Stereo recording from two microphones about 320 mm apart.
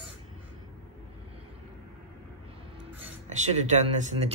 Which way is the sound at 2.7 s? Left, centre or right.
Centre.